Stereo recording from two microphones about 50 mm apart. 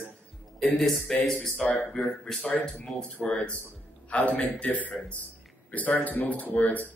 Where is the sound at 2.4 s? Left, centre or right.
Left.